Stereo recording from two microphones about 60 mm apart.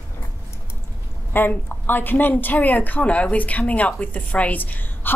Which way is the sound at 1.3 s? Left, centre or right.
Left.